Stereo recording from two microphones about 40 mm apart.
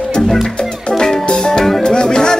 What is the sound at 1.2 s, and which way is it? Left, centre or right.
Music, centre.